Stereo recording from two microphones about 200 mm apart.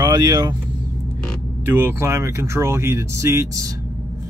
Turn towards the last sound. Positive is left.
turn(degrees=-15)  # may be behind; listen again after turning